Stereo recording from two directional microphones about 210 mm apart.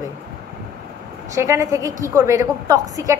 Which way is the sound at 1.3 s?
15° right (ahead or behind).